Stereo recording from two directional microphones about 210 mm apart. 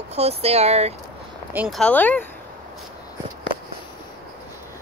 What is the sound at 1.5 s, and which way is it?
Speech, 10° right (ahead or behind).